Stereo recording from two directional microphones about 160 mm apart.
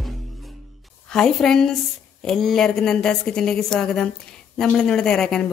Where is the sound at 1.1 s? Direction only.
Centre (ahead or behind).